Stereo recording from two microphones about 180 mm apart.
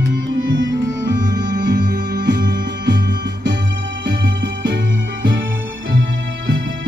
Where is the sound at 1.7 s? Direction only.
65° right (ahead or behind).